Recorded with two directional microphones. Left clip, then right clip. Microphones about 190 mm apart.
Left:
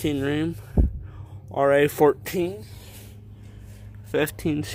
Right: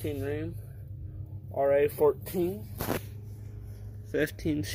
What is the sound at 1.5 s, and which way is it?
Speech, 45° left (ahead or behind).